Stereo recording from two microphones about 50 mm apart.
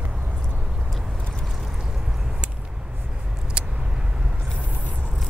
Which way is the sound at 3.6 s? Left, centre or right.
Right.